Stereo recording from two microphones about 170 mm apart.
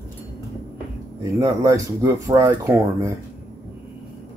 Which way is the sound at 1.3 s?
20° right (ahead or behind).